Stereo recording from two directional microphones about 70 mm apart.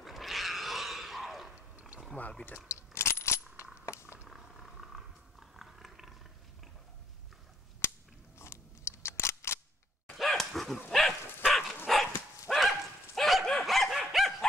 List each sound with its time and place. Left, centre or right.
0.0 s roar: centre
1.5 s a sound: centre
2.1 s speech: left
2.7 s coin: left
3.8 s a sound: left
4.3 s purr: centre
5.6 s a sound: centre
8.4 s scissors: left
10.1 s dog: centre